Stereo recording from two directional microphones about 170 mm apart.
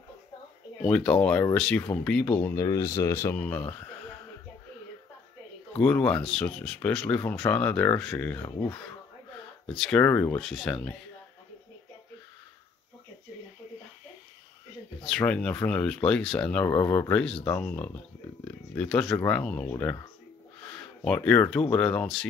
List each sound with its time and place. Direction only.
0.8 s speech: 5° left (ahead or behind)
3.3 s speech: 10° left (ahead or behind)
5.8 s speech: 5° left (ahead or behind)
9.7 s speech: 5° left (ahead or behind)
15.0 s speech: 5° left (ahead or behind)